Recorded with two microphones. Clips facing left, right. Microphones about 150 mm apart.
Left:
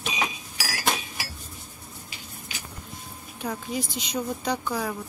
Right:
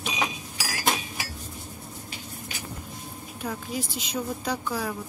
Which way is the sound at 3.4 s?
5° right (ahead or behind).